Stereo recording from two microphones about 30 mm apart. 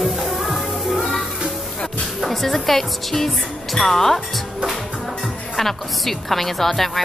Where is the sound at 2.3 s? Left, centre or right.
Centre.